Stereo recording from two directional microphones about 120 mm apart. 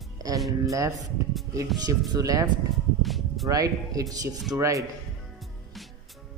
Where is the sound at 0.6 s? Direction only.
25° right (ahead or behind).